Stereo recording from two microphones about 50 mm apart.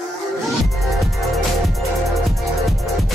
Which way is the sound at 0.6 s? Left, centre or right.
Centre.